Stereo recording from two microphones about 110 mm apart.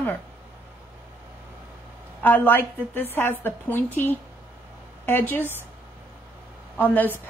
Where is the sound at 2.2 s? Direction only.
15° left (ahead or behind).